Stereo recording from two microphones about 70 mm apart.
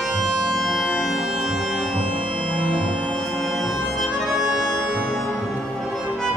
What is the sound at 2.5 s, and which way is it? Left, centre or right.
Music, centre.